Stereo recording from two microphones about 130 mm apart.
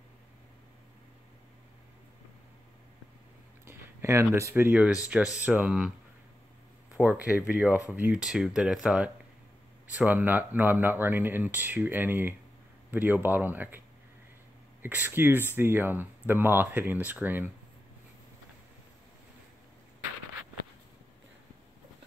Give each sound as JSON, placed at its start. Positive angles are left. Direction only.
{"t": 3.6, "sound": "speech", "side_deg": -20}
{"t": 6.9, "sound": "speech", "side_deg": -15}